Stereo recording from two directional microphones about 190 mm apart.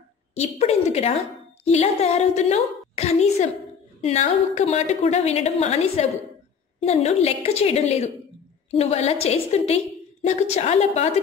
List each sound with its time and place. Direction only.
0.3 s a woman's voice: 35° left (ahead or behind)